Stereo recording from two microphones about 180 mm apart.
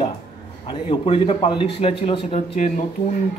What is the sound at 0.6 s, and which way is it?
Speech, 30° left (ahead or behind).